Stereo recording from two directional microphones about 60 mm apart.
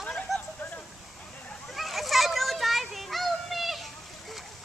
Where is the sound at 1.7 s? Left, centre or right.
Centre.